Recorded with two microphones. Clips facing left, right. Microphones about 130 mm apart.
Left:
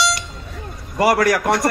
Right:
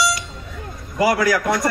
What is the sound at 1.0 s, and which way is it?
Speech, 75° left (ahead or behind).